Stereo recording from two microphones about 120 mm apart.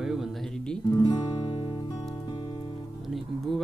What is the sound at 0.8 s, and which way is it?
Music, 35° left (ahead or behind).